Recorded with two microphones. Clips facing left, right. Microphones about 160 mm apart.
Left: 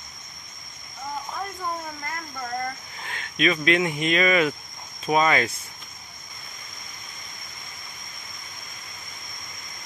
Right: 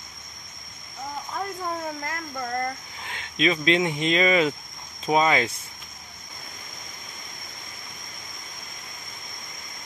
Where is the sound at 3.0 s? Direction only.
15° right (ahead or behind).